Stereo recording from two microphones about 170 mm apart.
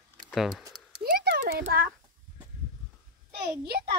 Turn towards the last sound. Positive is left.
turn(degrees=-70)  # may be behind; listen again after turning